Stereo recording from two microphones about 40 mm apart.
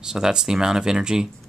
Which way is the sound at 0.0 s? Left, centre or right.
Centre.